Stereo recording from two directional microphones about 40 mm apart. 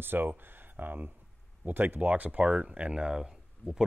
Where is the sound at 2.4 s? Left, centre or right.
Right.